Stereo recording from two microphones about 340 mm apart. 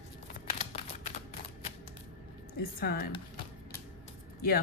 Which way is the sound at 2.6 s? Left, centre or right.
Left.